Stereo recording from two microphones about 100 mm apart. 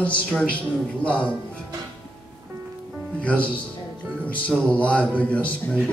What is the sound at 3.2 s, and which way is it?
A man's voice, 15° left (ahead or behind).